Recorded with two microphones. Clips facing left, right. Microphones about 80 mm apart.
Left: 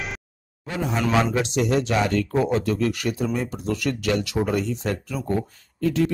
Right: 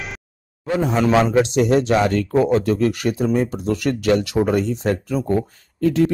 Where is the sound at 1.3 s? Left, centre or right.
Right.